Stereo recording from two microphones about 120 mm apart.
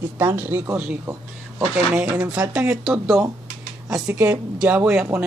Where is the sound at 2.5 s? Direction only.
10° right (ahead or behind).